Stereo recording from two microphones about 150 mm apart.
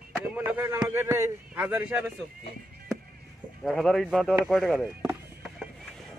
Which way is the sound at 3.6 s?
Centre (ahead or behind).